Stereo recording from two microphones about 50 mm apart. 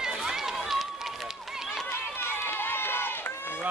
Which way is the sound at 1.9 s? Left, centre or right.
Left.